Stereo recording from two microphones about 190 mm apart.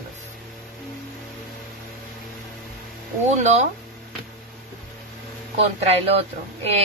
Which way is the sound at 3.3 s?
35° right (ahead or behind).